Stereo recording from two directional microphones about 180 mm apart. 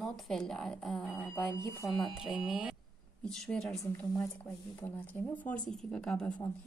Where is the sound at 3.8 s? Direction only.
15° left (ahead or behind).